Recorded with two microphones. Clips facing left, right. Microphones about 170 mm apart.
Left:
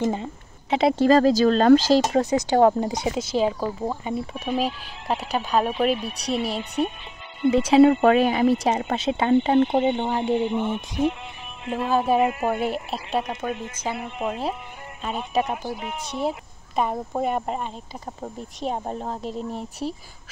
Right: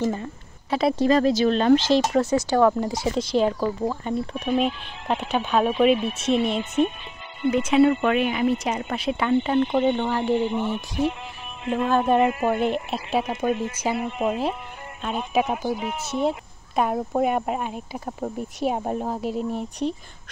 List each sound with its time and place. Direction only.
0.0 s speech: 20° left (ahead or behind)
1.1 s speech: 40° left (ahead or behind)
2.1 s speech: 20° left (ahead or behind)
3.2 s speech: 5° left (ahead or behind)
6.6 s speech: 35° left (ahead or behind); by 10.4 s 20° left (ahead or behind)
11.7 s speech: 5° left (ahead or behind)